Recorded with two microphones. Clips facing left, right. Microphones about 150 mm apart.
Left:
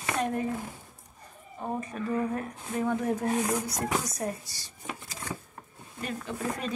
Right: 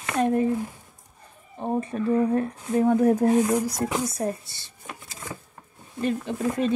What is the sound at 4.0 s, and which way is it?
Speech, 25° right (ahead or behind).